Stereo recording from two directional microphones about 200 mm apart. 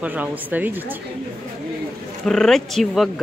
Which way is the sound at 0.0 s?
10° right (ahead or behind).